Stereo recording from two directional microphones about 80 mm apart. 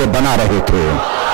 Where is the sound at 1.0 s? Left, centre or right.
Centre.